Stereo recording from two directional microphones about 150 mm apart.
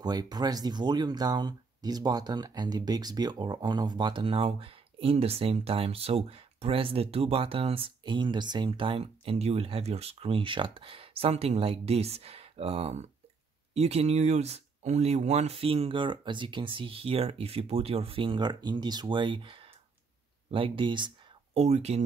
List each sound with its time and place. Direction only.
0.0 s speech: 25° right (ahead or behind)
21.5 s speech: 45° right (ahead or behind)